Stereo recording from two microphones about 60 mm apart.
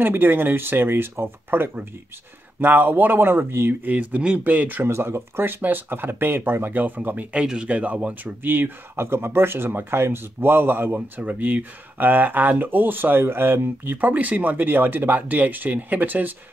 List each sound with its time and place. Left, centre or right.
0.0 s speech: right
3.8 s speech: right
4.9 s speech: right
7.4 s speech: centre; by 11.0 s right
11.1 s speech: right